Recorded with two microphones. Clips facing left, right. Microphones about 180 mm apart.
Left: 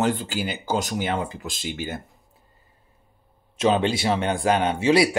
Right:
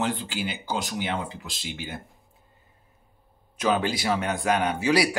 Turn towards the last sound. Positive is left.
turn(degrees=25)  # may be behind; listen again after turning